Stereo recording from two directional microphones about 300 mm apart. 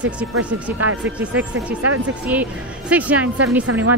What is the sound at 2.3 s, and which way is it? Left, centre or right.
Speech, centre.